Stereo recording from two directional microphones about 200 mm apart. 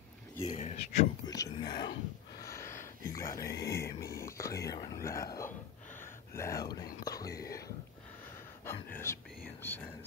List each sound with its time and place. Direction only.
0.6 s a sound: 35° left (ahead or behind)
1.2 s whispering: 20° left (ahead or behind)
3.4 s speech: 55° left (ahead or behind)
3.7 s speech: 15° left (ahead or behind)
5.9 s a sound: 15° left (ahead or behind)
7.1 s whispering: 20° left (ahead or behind)
8.9 s whispering: 10° left (ahead or behind)